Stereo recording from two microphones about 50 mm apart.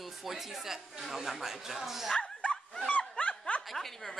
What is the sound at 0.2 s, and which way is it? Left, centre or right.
Speech, centre.